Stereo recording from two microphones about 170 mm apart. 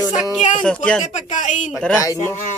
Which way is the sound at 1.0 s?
45° left (ahead or behind).